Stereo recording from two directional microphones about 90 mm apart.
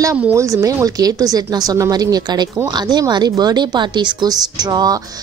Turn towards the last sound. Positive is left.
turn(degrees=-50)  # may be behind; listen again after turning